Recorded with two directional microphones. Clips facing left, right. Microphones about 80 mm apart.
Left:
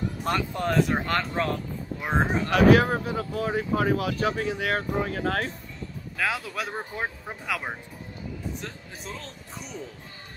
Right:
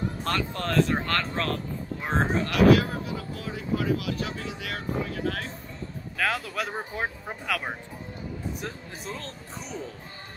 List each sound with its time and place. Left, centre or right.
0.2 s speech: centre
2.5 s speech: left
6.1 s speech: centre